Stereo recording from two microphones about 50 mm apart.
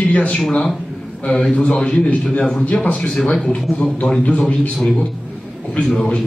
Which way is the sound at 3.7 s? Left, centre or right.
Left.